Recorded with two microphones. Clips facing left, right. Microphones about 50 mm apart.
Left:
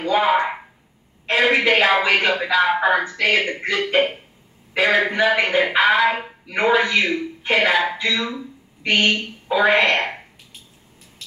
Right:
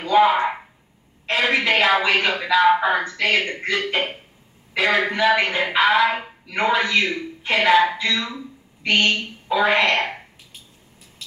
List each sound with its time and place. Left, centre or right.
1.2 s speech: centre
2.2 s a man's voice: centre
6.5 s a man's voice: left
8.8 s a woman's voice: left